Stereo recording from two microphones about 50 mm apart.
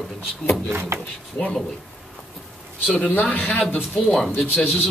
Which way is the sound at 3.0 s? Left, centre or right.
Left.